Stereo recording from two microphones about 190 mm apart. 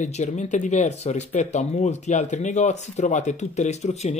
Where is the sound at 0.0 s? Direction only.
40° left (ahead or behind).